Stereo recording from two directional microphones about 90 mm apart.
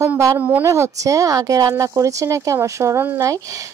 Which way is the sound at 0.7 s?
35° right (ahead or behind).